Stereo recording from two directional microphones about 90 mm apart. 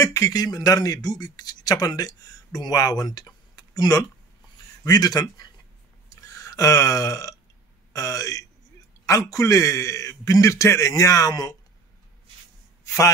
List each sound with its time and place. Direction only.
0.0 s speech: 40° left (ahead or behind)
6.0 s burping: 40° left (ahead or behind)
7.9 s a man's voice: 40° left (ahead or behind)
12.8 s a man's voice: 35° left (ahead or behind)